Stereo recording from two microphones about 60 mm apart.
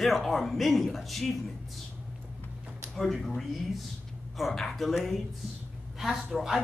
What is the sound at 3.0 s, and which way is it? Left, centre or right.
A woman's voice, centre.